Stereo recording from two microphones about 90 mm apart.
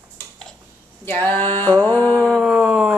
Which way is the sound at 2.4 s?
15° right (ahead or behind).